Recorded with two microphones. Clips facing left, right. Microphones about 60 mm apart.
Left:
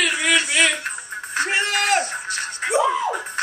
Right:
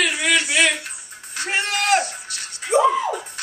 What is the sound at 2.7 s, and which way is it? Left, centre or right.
Music, centre.